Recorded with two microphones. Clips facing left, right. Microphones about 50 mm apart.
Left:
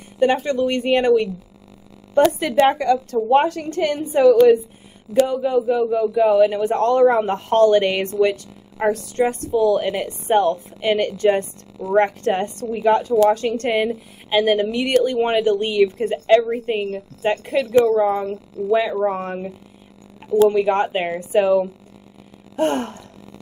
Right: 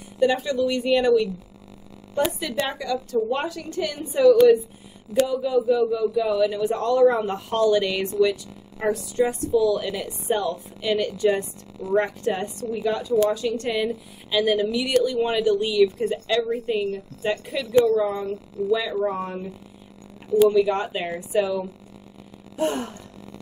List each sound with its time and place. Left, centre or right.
0.2 s a woman's voice: left
2.5 s a woman's voice: left
20.4 s a woman's voice: left